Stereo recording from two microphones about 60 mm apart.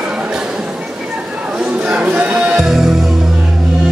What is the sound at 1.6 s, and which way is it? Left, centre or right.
Music, centre.